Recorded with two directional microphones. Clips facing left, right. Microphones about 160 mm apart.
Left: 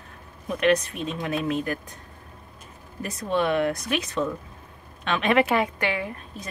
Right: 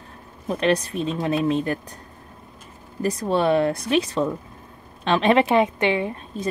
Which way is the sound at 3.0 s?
35° right (ahead or behind).